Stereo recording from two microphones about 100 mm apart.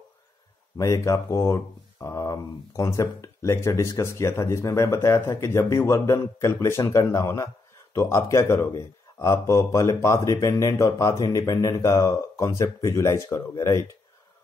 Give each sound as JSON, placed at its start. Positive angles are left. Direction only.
{"t": 0.7, "sound": "speech", "side_deg": 35}